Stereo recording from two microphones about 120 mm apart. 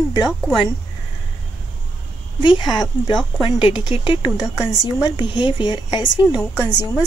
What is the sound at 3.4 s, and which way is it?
Speech, 45° left (ahead or behind).